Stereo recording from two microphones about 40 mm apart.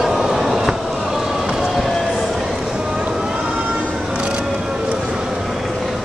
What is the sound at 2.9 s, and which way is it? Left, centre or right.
Vehicle, right.